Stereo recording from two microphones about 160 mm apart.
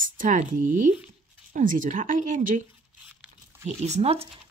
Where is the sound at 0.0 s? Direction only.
55° right (ahead or behind).